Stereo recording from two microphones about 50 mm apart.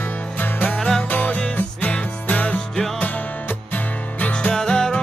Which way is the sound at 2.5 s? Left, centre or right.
Centre.